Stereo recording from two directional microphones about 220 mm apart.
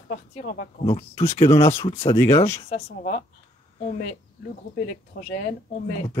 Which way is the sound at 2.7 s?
45° left (ahead or behind).